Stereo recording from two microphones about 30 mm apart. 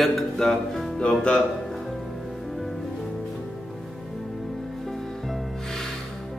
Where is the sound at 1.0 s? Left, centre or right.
Left.